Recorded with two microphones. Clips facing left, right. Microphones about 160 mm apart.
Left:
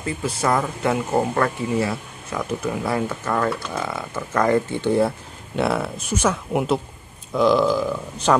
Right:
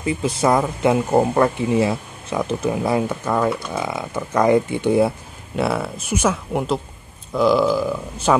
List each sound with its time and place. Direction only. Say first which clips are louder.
0.0 s speech: right 4 dB; 20° right (ahead or behind)
5.6 s speech: even; centre (ahead or behind)